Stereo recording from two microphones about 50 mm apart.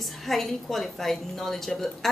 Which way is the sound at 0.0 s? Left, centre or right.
Centre.